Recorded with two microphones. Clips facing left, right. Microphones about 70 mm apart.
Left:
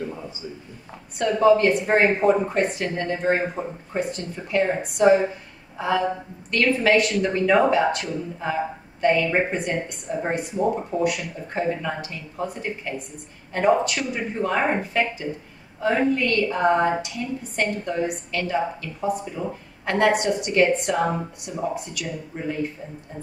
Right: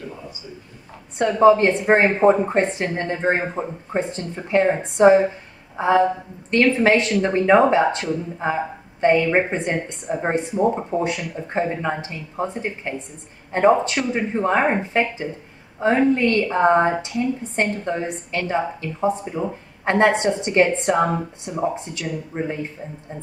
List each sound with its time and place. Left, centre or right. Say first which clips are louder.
1.1 s a woman's voice: right 3 dB; right